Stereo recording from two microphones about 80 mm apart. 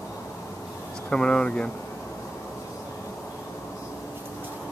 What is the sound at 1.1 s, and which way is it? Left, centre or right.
Speech, centre.